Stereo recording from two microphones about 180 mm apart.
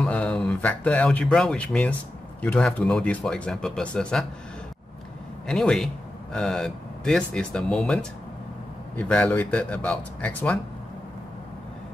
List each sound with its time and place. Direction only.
0.0 s speech: 5° left (ahead or behind)
5.5 s speech: 5° left (ahead or behind)